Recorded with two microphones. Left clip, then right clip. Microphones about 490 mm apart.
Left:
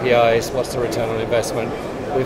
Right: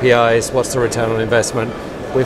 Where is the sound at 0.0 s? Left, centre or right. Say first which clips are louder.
Right 3 dB; right.